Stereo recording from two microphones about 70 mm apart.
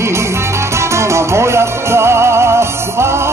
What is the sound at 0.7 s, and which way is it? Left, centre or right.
Music, right.